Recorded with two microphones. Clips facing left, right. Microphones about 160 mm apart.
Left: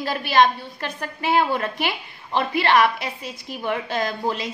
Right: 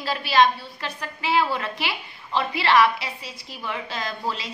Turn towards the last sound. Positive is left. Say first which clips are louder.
# left 5 dB
turn(degrees=55)  # may be behind; listen again after turning